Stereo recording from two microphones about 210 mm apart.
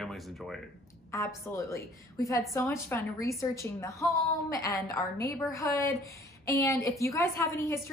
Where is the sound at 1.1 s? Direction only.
15° left (ahead or behind).